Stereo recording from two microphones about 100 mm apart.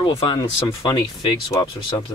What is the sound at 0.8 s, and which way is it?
Speech, 45° left (ahead or behind).